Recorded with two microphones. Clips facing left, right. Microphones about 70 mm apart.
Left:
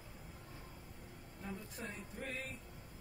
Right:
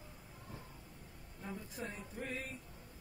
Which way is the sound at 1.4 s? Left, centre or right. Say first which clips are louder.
Right 2 dB; centre.